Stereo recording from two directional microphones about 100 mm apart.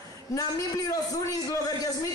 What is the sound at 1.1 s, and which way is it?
Speech, 35° left (ahead or behind).